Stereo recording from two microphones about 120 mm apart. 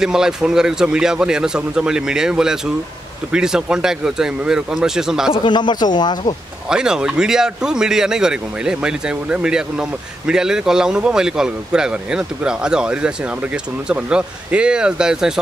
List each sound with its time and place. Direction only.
0.0 s speech: 5° right (ahead or behind)
5.3 s speech: 40° left (ahead or behind)
6.7 s speech: 5° right (ahead or behind)